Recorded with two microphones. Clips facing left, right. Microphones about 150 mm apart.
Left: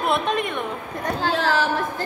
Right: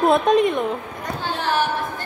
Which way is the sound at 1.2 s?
90° left.